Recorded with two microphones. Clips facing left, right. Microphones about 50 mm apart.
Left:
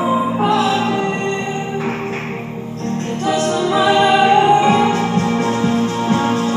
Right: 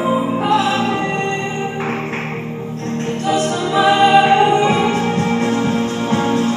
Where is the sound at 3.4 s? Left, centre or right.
Left.